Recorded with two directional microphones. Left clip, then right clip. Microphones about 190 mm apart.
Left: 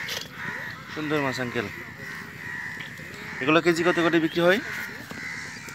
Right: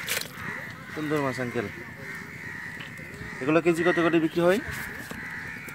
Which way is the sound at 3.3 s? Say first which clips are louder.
Left 2 dB; 5° left (ahead or behind).